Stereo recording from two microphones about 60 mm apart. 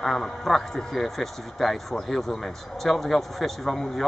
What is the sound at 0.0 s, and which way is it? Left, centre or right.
Speech, centre.